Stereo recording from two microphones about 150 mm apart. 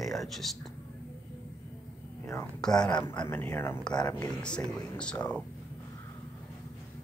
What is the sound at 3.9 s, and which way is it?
Speech, 25° left (ahead or behind).